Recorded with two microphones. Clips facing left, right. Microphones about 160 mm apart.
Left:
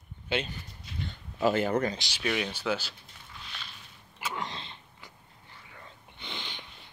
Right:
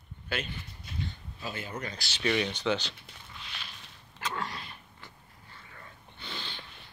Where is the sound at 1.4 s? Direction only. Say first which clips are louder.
Left 13 dB; 65° left (ahead or behind).